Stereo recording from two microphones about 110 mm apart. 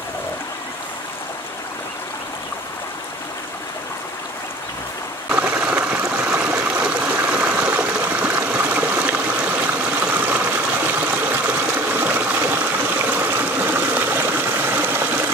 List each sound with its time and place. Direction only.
5.3 s stream: 10° right (ahead or behind)